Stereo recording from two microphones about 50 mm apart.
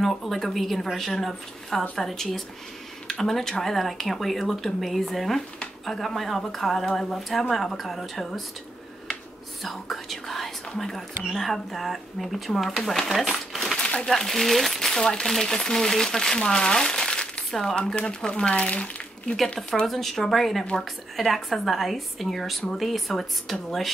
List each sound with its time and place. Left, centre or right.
0.0 s a woman's voice: centre
9.6 s whispering: centre
11.3 s a woman's voice: centre
13.3 s crumpling: centre
13.7 s crumpling: left
14.0 s a woman's voice: centre
17.7 s speech: left
19.9 s a woman's voice: centre